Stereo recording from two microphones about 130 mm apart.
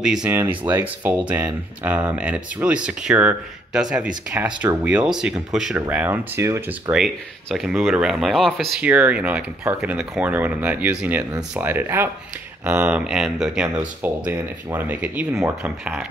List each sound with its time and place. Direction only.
0.0 s speech: 5° right (ahead or behind)
0.3 s speech: 15° right (ahead or behind)
5.8 s speech: 15° right (ahead or behind)
6.9 s speech: centre (ahead or behind)
8.8 s speech: 10° right (ahead or behind)